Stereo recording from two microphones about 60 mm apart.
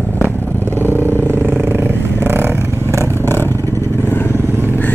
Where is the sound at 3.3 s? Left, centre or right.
Left.